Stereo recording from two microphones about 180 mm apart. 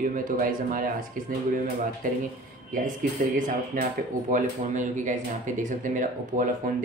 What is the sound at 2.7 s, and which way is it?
Speech, 45° right (ahead or behind).